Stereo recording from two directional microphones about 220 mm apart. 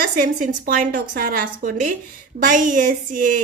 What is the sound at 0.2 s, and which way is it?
A woman's voice, 40° right (ahead or behind).